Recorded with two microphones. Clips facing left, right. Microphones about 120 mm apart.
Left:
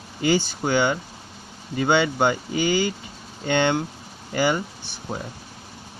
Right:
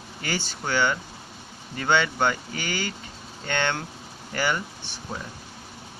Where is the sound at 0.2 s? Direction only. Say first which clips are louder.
Left 10 dB; 15° left (ahead or behind).